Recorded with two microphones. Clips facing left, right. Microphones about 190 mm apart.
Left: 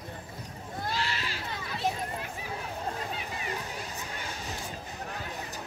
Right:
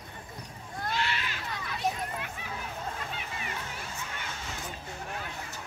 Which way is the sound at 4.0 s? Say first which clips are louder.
Left 1 dB; 35° left (ahead or behind).